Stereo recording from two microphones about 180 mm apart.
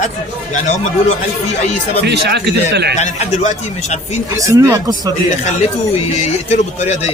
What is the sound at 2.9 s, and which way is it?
Speech, 40° left (ahead or behind).